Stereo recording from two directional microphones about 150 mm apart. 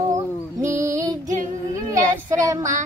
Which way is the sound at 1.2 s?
55° right (ahead or behind).